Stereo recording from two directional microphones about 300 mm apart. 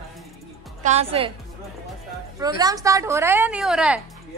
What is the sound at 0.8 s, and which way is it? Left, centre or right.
Speech, right.